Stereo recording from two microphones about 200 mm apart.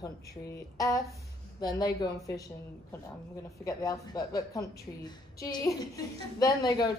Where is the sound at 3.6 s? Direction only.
15° left (ahead or behind).